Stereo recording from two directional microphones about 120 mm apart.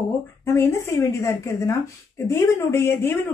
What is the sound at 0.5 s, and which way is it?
Speech, 20° left (ahead or behind).